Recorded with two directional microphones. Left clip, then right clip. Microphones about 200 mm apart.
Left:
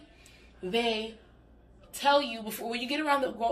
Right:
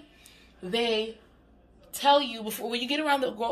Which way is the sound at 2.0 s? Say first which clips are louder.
Right 3 dB; 40° right (ahead or behind).